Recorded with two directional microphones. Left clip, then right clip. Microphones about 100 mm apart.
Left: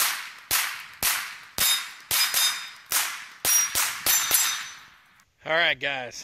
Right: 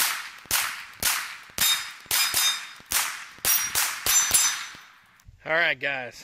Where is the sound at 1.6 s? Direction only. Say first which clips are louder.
Right 1 dB; centre (ahead or behind).